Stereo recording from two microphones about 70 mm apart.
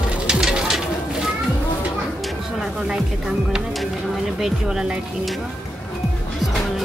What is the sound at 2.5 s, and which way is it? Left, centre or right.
Music, centre.